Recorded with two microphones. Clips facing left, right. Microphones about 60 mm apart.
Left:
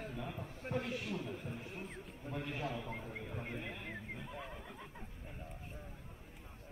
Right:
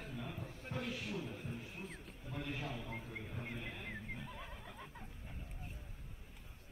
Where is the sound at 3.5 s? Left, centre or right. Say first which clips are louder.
Left 2 dB; left.